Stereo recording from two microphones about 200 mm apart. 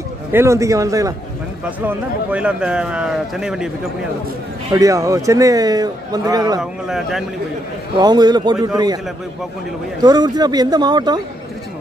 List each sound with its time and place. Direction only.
0.3 s a man's voice: 15° right (ahead or behind)
4.7 s speech: 15° right (ahead or behind)
6.6 s a man's voice: centre (ahead or behind)
8.0 s speech: 20° right (ahead or behind)